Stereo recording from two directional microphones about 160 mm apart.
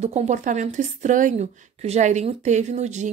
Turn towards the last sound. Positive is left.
turn(degrees=-45)  # may be behind; listen again after turning